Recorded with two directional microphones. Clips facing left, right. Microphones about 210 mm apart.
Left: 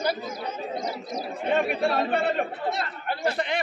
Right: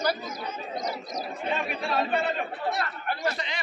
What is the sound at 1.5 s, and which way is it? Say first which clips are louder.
Speech: left 6 dB; 55° left (ahead or behind).